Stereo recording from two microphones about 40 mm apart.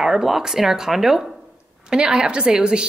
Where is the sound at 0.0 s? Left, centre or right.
Centre.